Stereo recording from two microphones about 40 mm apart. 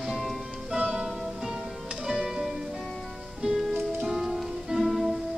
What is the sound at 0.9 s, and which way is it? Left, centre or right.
Music, centre.